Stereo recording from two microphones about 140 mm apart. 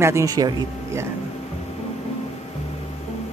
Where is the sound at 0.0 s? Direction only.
20° right (ahead or behind).